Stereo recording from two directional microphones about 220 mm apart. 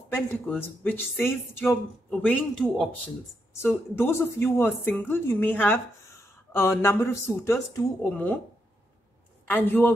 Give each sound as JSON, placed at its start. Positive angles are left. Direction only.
{"t": 0.1, "sound": "speech", "side_deg": 10}
{"t": 9.5, "sound": "speech", "side_deg": 10}